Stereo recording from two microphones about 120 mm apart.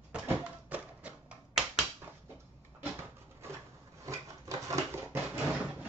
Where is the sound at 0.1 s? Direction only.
10° right (ahead or behind).